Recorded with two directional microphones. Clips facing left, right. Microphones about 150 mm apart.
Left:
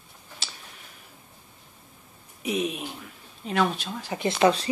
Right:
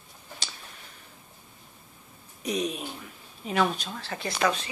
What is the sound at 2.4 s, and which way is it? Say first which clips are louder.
Speech: left 2 dB; 5° left (ahead or behind).